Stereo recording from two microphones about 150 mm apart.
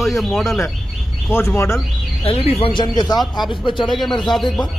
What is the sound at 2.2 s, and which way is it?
Speech, 40° left (ahead or behind).